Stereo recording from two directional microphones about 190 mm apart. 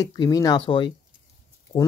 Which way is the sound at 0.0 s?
20° left (ahead or behind).